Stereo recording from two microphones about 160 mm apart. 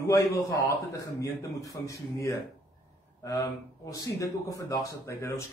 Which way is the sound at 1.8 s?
20° left (ahead or behind).